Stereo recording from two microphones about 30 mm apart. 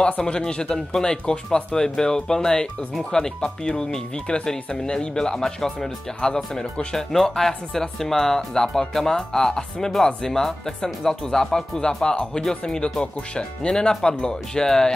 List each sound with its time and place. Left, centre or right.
0.2 s speech: left
5.4 s speech: centre
13.0 s speech: left